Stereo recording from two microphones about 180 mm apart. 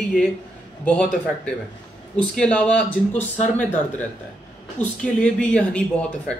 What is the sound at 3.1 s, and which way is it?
Speech, 40° left (ahead or behind).